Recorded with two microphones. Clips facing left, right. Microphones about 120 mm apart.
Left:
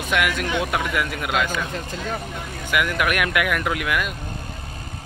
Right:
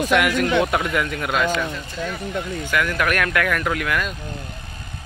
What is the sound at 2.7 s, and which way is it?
Speech, 15° left (ahead or behind).